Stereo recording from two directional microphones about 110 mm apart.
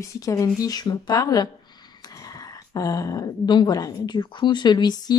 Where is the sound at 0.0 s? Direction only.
30° left (ahead or behind).